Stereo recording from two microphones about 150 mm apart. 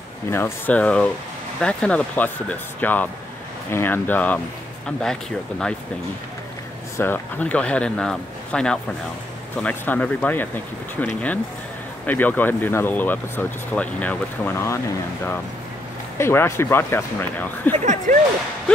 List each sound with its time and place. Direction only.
0.3 s speech: 15° left (ahead or behind)
7.0 s speech: 10° left (ahead or behind)
16.2 s speech: 15° left (ahead or behind)
17.7 s speech: 50° right (ahead or behind)